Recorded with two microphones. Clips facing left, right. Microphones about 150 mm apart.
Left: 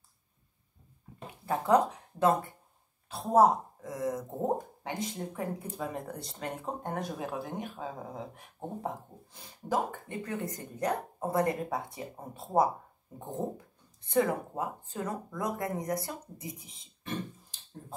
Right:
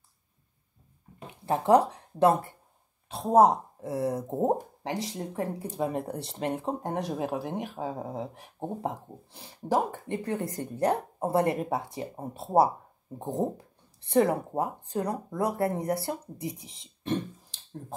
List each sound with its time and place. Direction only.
1.4 s speech: 25° right (ahead or behind)
16.3 s speech: 75° right (ahead or behind)